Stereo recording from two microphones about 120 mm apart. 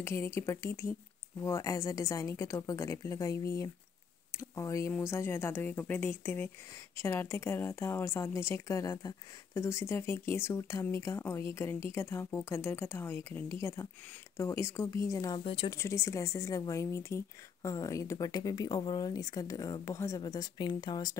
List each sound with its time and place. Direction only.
0.0 s a woman's voice: 25° left (ahead or behind)
15.3 s speech: 45° left (ahead or behind)
15.7 s a woman's voice: 25° left (ahead or behind)